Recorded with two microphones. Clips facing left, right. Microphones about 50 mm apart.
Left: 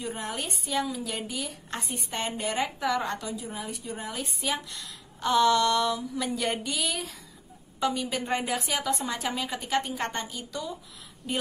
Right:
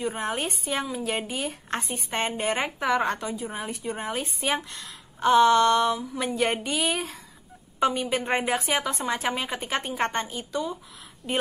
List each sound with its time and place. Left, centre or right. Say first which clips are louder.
0.0 s a woman's voice: right 5 dB; right